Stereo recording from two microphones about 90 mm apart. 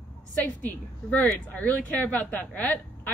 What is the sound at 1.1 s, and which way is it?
Speech, 15° left (ahead or behind).